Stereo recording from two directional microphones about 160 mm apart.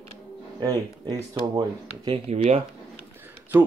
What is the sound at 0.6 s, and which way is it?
Speech, 25° right (ahead or behind).